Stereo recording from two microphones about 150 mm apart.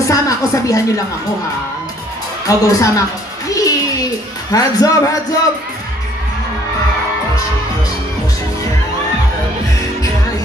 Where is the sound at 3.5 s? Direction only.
25° left (ahead or behind).